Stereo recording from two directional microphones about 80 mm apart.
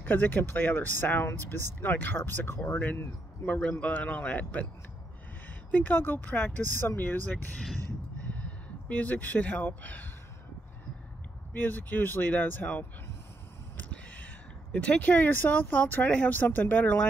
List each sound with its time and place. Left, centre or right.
0.0 s speech: left
5.7 s speech: left
11.5 s speech: left